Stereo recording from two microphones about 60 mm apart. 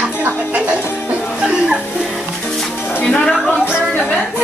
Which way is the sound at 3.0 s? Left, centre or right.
Centre.